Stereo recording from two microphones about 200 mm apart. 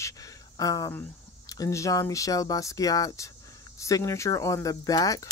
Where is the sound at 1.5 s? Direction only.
15° left (ahead or behind).